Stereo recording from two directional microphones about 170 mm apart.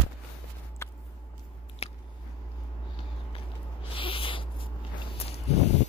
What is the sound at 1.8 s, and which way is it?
Chewing, 35° left (ahead or behind).